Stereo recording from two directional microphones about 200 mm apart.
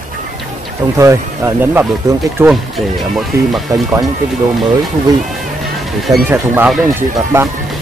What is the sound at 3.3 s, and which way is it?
Speech, 15° right (ahead or behind).